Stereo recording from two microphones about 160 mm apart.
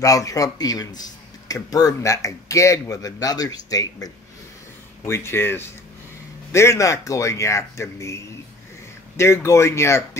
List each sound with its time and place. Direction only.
0.0 s a man's voice: 20° left (ahead or behind)